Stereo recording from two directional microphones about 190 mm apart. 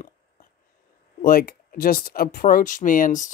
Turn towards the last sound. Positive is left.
turn(degrees=45)  # may be behind; listen again after turning